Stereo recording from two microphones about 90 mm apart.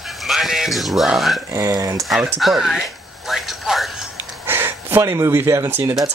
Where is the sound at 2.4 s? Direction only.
Centre (ahead or behind).